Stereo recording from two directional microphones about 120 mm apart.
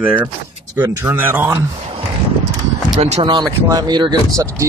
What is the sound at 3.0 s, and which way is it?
Speech, 60° right (ahead or behind).